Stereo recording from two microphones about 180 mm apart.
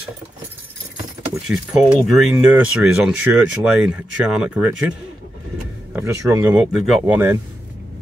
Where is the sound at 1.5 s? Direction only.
5° right (ahead or behind).